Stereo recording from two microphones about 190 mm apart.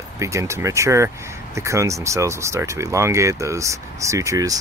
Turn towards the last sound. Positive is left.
turn(degrees=-15)  # may be behind; listen again after turning